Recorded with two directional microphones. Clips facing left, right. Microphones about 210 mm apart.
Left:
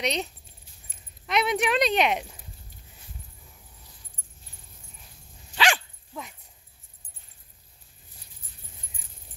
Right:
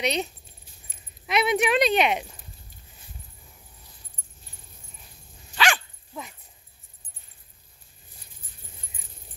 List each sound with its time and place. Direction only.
0.0 s speech: 5° right (ahead or behind)
5.5 s dog: 30° left (ahead or behind)